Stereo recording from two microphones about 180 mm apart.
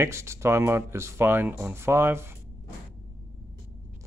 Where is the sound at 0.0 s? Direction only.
15° right (ahead or behind).